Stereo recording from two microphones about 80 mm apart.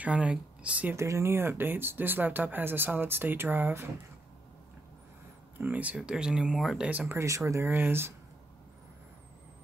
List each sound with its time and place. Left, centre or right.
0.0 s speech: centre
0.9 s speech: right
5.6 s speech: centre
6.8 s speech: centre
7.2 s speech: right
7.6 s speech: right